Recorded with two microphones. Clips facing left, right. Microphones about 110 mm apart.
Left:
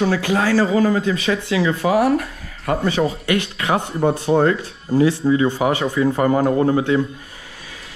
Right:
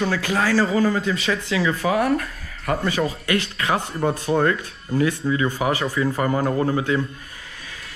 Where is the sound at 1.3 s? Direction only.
30° left (ahead or behind).